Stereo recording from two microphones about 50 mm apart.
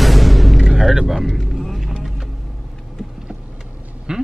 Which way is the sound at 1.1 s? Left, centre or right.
Centre.